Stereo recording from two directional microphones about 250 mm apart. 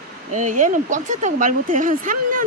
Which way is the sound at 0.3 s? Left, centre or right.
Right.